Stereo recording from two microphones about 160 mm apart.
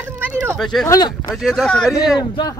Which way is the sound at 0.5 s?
Centre (ahead or behind).